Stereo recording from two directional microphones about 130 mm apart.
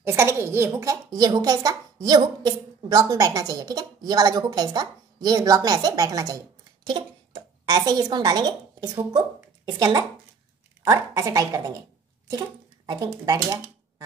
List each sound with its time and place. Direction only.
0.0 s a woman's voice: 20° right (ahead or behind)